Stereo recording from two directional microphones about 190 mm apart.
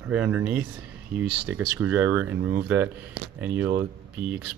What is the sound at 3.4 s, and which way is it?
Speech, 10° right (ahead or behind).